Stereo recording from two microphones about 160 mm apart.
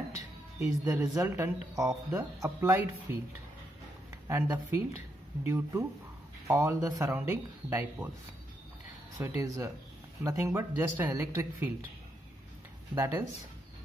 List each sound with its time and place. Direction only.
0.7 s speech: 20° right (ahead or behind)
4.3 s speech: 15° right (ahead or behind)
9.2 s speech: 20° right (ahead or behind)
12.9 s speech: 15° right (ahead or behind)